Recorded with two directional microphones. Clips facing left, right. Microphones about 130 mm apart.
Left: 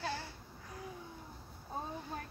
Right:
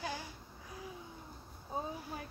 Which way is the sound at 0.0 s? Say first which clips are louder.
Left 1 dB; 15° right (ahead or behind).